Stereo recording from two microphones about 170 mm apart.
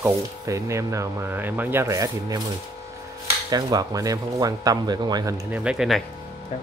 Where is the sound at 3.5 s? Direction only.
20° right (ahead or behind).